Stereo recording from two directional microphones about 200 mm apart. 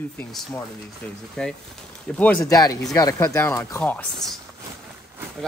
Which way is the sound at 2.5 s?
20° left (ahead or behind).